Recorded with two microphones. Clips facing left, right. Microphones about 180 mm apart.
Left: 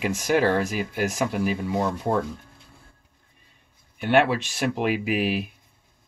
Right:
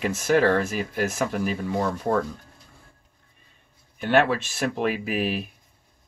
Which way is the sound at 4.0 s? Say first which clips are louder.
Even; 15° left (ahead or behind).